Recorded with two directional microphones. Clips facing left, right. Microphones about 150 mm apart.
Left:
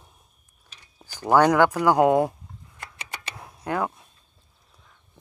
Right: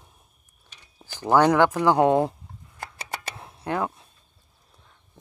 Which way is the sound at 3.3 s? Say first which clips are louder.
Left 1 dB; 25° right (ahead or behind).